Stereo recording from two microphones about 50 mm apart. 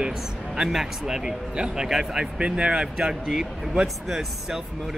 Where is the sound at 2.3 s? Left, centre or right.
Right.